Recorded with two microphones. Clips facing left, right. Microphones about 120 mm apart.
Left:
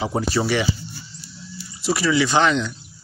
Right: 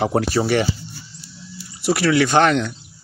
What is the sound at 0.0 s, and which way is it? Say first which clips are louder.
Speech: right 5 dB; 65° right (ahead or behind).